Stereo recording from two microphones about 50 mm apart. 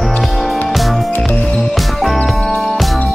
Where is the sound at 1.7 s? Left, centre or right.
Centre.